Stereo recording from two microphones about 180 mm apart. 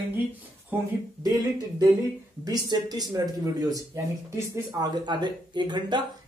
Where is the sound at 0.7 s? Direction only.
10° right (ahead or behind).